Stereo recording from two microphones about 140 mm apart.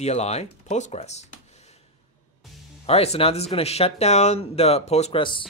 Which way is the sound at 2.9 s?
45° left (ahead or behind).